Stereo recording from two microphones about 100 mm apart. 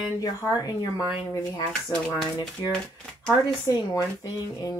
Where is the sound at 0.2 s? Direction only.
40° left (ahead or behind).